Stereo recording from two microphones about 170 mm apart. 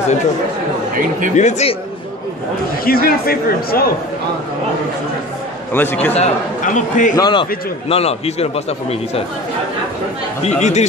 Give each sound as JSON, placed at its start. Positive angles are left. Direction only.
{"t": 1.3, "sound": "a man's voice", "side_deg": 40}
{"t": 2.8, "sound": "a man's voice", "side_deg": 60}
{"t": 5.7, "sound": "a man's voice", "side_deg": 10}
{"t": 6.1, "sound": "a man's voice", "side_deg": 45}
{"t": 7.2, "sound": "a man's voice", "side_deg": 25}
{"t": 7.9, "sound": "a man's voice", "side_deg": 35}
{"t": 10.4, "sound": "a man's voice", "side_deg": 40}